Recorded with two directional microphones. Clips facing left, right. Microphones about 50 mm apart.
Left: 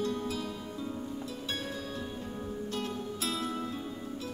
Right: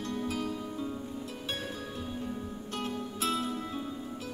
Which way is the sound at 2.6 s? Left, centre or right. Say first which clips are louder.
Right 2 dB; right.